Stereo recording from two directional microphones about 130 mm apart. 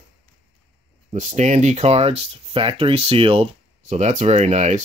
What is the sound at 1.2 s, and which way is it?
Speech, 70° right (ahead or behind).